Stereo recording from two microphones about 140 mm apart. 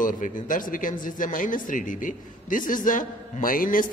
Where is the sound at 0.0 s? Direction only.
70° left (ahead or behind).